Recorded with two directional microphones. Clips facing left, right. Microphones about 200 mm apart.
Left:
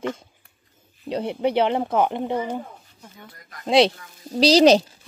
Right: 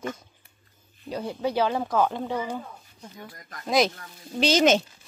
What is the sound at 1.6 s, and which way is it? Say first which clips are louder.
Speech: left 2 dB; 25° left (ahead or behind).